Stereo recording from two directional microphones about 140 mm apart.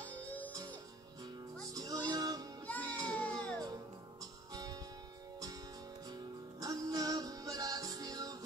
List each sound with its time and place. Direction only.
0.0 s music: 10° left (ahead or behind)
1.7 s music: 25° right (ahead or behind)
2.6 s music: 10° left (ahead or behind)
6.1 s music: 25° right (ahead or behind)